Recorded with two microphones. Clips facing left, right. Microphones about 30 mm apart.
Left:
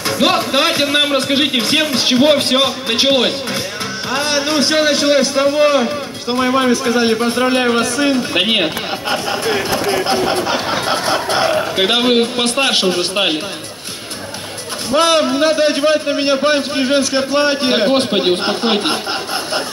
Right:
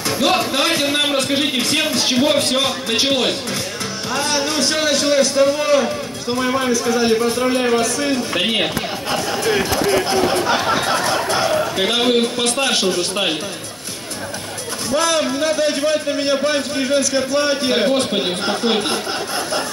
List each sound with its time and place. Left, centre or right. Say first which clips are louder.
0.2 s a man's voice: left 3 dB; left
14.9 s a man's voice: left 5 dB; left